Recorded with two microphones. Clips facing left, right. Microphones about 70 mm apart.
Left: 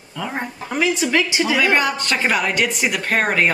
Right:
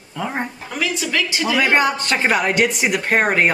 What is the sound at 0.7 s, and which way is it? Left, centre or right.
Speech, left.